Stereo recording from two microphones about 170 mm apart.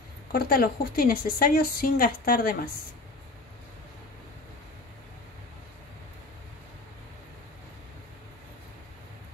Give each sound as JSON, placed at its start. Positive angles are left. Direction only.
{"t": 0.3, "sound": "speech", "side_deg": 65}